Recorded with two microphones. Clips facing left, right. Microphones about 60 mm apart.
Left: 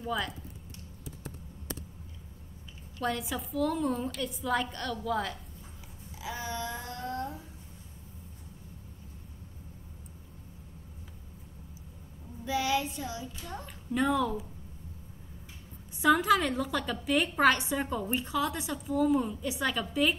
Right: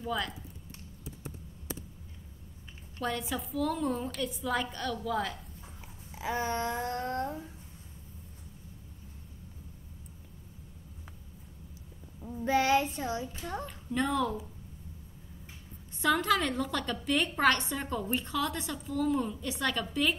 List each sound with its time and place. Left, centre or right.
0.0 s speech: centre
3.0 s a woman's voice: centre
6.1 s a sound: right
12.4 s a sound: right
13.7 s a woman's voice: centre
16.0 s a woman's voice: centre